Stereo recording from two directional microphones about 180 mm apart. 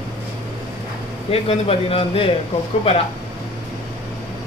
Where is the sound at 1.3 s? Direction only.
35° left (ahead or behind).